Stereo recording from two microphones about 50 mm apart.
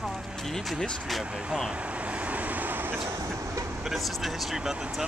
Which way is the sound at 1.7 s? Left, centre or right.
Right.